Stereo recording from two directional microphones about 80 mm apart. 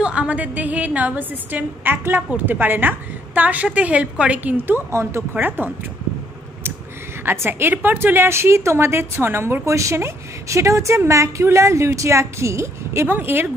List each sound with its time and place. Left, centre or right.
0.0 s a woman's voice: centre
7.2 s a woman's voice: right